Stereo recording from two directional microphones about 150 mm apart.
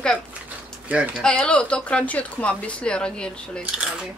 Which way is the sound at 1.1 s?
5° left (ahead or behind).